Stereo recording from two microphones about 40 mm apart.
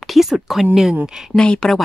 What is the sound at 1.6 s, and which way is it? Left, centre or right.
Speech, centre.